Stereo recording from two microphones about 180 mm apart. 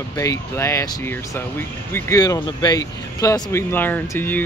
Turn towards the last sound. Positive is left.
turn(degrees=10)  # may be behind; listen again after turning